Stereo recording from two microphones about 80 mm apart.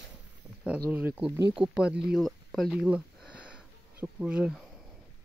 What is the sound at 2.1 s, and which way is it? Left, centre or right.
Speech, centre.